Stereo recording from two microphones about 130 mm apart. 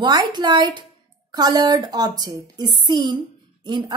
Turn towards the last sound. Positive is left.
turn(degrees=-40)  # may be behind; listen again after turning